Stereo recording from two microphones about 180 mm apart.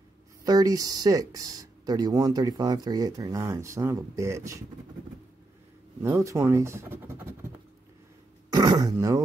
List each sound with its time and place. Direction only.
0.5 s speech: 20° right (ahead or behind)
6.0 s speech: 15° right (ahead or behind)
8.5 s throat clearing: 20° right (ahead or behind)